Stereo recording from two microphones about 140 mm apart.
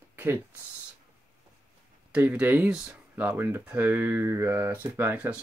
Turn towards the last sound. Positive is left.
turn(degrees=-10)  # may be behind; listen again after turning